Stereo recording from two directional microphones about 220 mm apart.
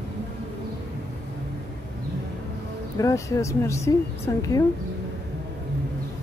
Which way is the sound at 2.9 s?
15° left (ahead or behind).